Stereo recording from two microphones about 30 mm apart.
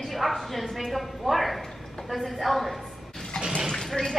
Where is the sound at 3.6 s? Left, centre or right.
Centre.